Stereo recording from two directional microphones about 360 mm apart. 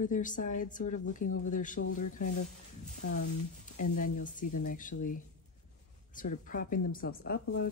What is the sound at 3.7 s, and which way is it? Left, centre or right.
Speech, left.